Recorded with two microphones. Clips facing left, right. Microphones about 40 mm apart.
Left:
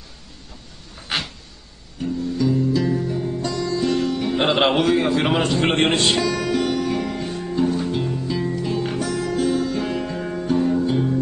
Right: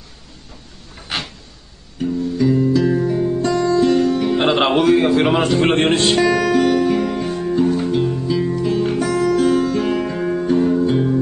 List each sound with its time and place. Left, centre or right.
1.0 s a sound: centre
2.0 s music: centre
9.4 s music: right
9.9 s music: centre